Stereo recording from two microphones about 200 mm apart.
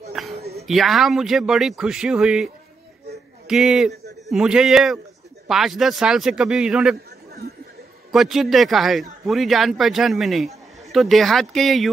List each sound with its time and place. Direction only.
0.1 s a sound: centre (ahead or behind)
0.7 s a man's voice: centre (ahead or behind)
8.1 s a man's voice: centre (ahead or behind)